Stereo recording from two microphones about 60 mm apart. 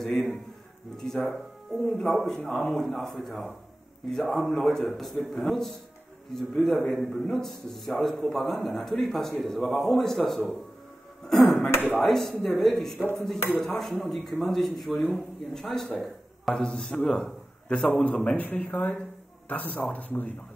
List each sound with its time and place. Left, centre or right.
0.0 s a man's voice: centre
18.0 s speech: left